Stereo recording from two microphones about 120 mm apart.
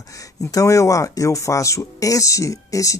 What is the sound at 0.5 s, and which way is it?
Speech, 25° left (ahead or behind).